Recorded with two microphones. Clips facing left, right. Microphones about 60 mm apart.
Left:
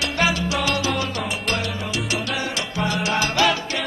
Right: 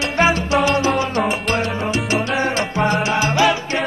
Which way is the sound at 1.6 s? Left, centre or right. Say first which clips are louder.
Right 6 dB; right.